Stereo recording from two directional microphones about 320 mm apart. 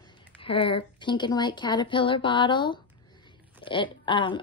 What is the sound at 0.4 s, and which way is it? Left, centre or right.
Speech, centre.